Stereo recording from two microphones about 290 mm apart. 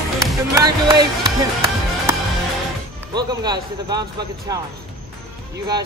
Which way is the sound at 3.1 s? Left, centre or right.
Centre.